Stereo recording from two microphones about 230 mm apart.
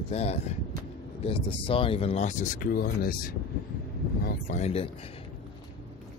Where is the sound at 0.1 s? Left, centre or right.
Left.